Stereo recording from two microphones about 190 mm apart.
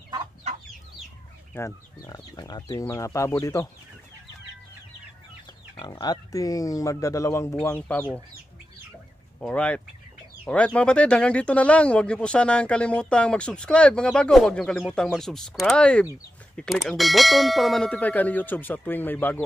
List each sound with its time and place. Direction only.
1.5 s speech: 15° left (ahead or behind)
5.8 s speech: 20° left (ahead or behind)
9.4 s speech: 5° left (ahead or behind)